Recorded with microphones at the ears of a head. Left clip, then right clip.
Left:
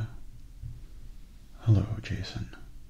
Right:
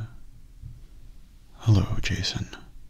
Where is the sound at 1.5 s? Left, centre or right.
Right.